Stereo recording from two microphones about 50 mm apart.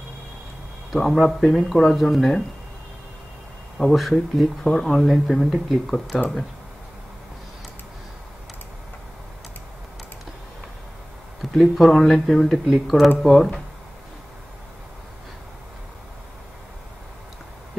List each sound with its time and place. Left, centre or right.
0.9 s speech: centre
3.7 s speech: centre
11.5 s speech: centre
12.6 s speech: centre
13.2 s speech: centre